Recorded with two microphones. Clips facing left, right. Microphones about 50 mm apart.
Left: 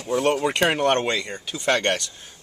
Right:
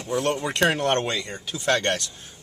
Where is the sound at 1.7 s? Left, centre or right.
Centre.